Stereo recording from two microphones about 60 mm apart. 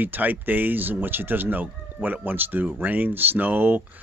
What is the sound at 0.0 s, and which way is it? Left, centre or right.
Speech, right.